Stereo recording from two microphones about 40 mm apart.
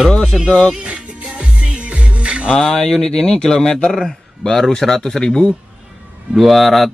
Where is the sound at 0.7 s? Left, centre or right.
Right.